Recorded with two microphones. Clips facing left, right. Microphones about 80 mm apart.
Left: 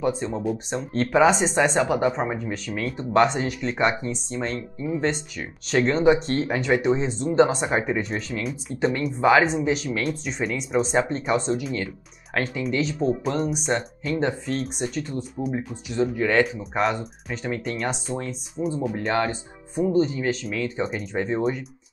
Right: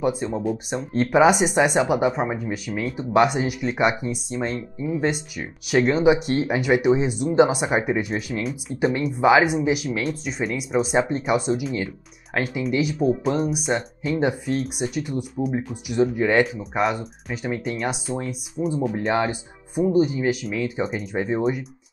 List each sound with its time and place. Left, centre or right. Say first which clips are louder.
0.0 s speech: right 1 dB; centre
16.4 s speech: right 1 dB; centre